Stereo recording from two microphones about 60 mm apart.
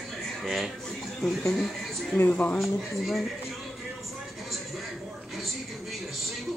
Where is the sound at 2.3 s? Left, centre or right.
Left.